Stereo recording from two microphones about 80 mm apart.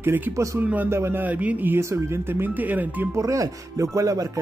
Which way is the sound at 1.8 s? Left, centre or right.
Right.